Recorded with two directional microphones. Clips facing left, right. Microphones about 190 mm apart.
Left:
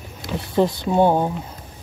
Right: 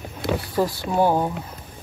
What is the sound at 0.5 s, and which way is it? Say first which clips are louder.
Speech: left 5 dB; 20° left (ahead or behind).